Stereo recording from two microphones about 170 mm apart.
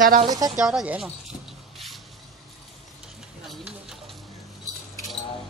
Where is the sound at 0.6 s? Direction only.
Centre (ahead or behind).